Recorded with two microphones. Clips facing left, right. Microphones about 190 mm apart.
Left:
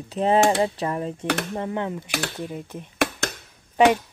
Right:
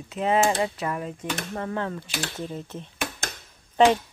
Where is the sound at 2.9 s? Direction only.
70° left (ahead or behind).